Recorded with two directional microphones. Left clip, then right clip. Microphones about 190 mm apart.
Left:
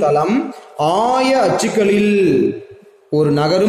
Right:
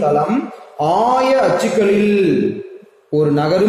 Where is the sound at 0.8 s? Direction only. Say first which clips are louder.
Right 1 dB; 45° left (ahead or behind).